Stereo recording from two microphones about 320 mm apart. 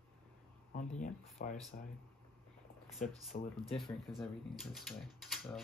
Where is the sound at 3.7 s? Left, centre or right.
Centre.